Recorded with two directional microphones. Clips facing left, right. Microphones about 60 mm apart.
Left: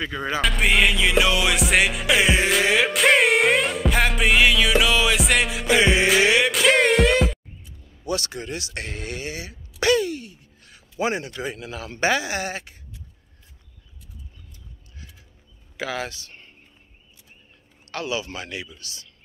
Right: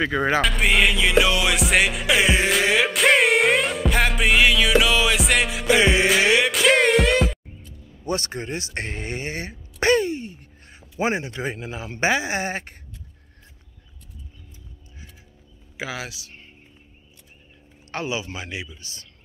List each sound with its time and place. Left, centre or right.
0.0 s speech: right
0.4 s music: centre
8.0 s speech: right
15.8 s speech: centre
17.9 s speech: right